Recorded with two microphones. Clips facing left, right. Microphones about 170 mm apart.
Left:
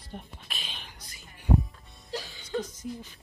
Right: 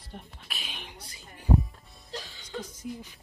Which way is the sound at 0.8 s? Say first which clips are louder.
Right 4 dB; 30° right (ahead or behind).